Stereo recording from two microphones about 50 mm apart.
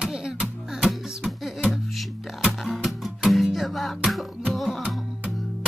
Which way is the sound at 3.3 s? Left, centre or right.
Centre.